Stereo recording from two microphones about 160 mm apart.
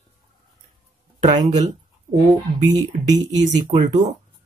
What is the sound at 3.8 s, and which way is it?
Speech, 50° right (ahead or behind).